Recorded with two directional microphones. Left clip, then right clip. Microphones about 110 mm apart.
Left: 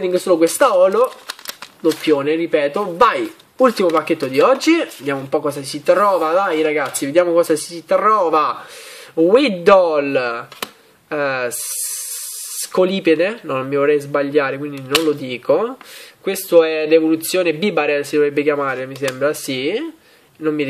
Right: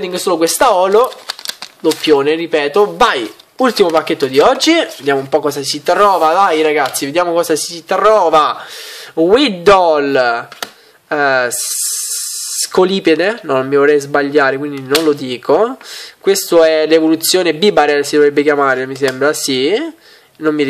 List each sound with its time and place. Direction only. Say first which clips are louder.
0.0 s speech: even; 25° right (ahead or behind)
2.0 s speech: right 7 dB; 30° right (ahead or behind)